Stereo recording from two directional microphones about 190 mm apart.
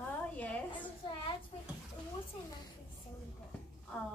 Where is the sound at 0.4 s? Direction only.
10° left (ahead or behind).